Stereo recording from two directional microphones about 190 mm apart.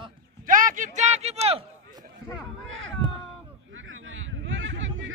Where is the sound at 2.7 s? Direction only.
90° right.